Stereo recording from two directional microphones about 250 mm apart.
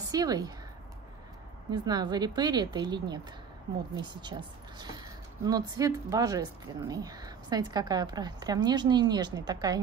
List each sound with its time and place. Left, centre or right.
0.1 s a woman's voice: centre
1.7 s a woman's voice: centre